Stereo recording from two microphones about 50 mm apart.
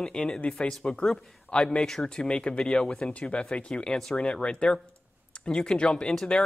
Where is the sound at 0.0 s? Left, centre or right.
Centre.